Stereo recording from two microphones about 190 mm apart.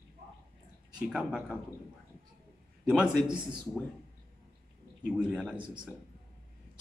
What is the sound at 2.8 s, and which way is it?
Speech, 5° right (ahead or behind).